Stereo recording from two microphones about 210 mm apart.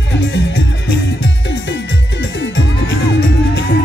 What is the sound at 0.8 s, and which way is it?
Music, 60° left (ahead or behind).